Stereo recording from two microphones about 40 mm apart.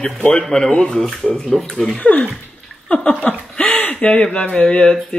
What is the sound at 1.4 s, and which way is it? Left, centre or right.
Speech, centre.